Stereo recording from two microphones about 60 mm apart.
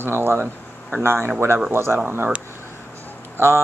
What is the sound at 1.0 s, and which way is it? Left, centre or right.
Speech, right.